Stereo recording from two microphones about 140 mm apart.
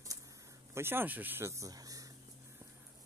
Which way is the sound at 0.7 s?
15° right (ahead or behind).